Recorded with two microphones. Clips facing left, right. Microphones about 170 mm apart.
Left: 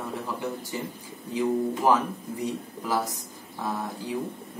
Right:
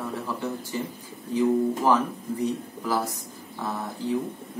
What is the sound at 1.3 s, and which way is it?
Speech, 15° left (ahead or behind).